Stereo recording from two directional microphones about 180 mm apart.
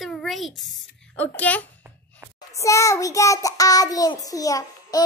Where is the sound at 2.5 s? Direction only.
15° left (ahead or behind).